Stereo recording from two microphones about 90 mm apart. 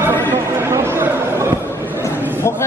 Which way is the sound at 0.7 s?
30° right (ahead or behind).